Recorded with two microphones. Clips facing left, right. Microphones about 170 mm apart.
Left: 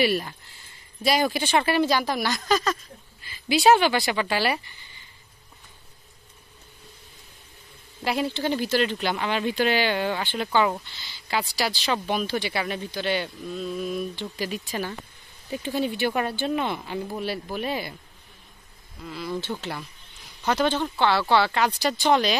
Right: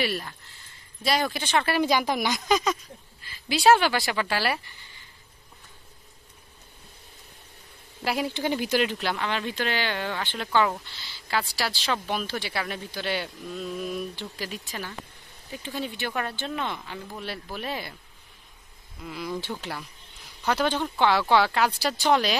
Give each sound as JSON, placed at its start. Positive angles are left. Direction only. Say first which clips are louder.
{"t": 1.0, "sound": "speech", "louder": "left 3 dB", "side_deg": 5}
{"t": 1.8, "sound": "speech", "louder": "left 1 dB", "side_deg": -15}
{"t": 3.4, "sound": "speech", "louder": "left 2 dB", "side_deg": 0}
{"t": 8.0, "sound": "speech", "louder": "left 2 dB", "side_deg": -10}
{"t": 8.9, "sound": "speech", "louder": "left 2 dB", "side_deg": 0}
{"t": 9.2, "sound": "speech", "louder": "left 5 dB", "side_deg": 10}
{"t": 14.7, "sound": "speech", "louder": "left 6 dB", "side_deg": 25}
{"t": 15.6, "sound": "speech", "louder": "left 7 dB", "side_deg": 15}
{"t": 17.2, "sound": "speech", "louder": "left 6 dB", "side_deg": 5}
{"t": 19.6, "sound": "speech", "louder": "left 2 dB", "side_deg": -10}